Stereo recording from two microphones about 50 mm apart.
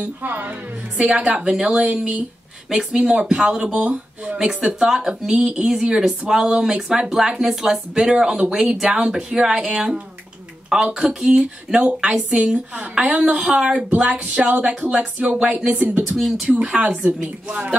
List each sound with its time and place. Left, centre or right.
0.0 s a woman's voice: right
0.9 s speech: centre
1.2 s speech: right
1.5 s speech: centre
11.8 s speech: right
13.9 s speech: right
16.2 s speech: centre
16.6 s a woman's voice: right